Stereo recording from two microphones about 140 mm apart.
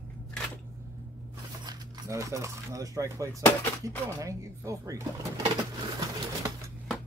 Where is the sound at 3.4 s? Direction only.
15° left (ahead or behind).